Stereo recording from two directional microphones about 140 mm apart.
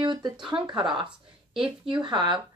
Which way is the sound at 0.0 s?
30° right (ahead or behind).